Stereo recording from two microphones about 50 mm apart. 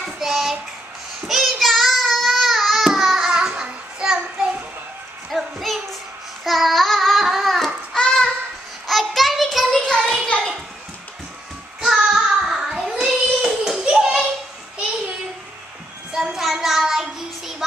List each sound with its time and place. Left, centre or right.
0.0 s child singing: centre
3.3 s child singing: centre
5.3 s child singing: centre
9.8 s a sound: centre
11.8 s child singing: centre
16.1 s child singing: centre